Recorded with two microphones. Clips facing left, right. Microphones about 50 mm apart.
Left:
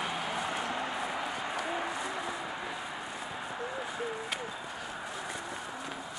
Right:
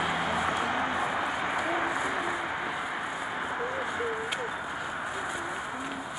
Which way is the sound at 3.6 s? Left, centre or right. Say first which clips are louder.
Right 5 dB; right.